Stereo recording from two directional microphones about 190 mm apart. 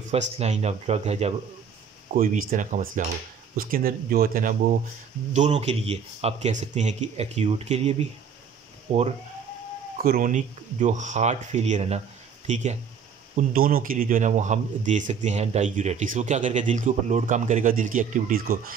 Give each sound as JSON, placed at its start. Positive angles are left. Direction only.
{"t": 0.4, "sound": "speech", "side_deg": -35}
{"t": 10.0, "sound": "speech", "side_deg": -45}